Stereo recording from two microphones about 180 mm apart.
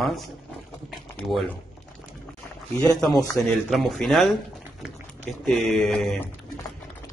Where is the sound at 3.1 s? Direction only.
20° left (ahead or behind).